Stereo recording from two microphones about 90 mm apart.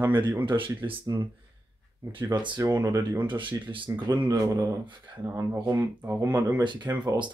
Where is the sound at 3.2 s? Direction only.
60° right (ahead or behind).